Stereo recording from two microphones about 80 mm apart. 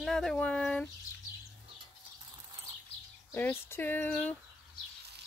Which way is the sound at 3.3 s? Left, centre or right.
Left.